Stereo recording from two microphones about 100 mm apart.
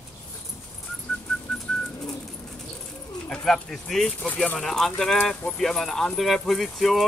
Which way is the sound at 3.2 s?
5° left (ahead or behind).